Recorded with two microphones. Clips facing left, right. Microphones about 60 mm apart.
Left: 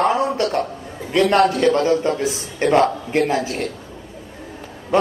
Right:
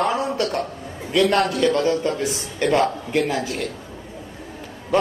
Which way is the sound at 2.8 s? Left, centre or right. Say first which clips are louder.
Left 3 dB; left.